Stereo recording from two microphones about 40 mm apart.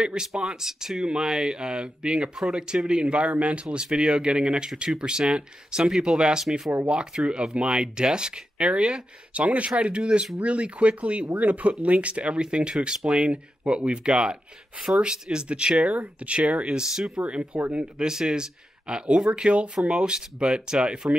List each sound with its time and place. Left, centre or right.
0.0 s speech: right
16.9 s speech: centre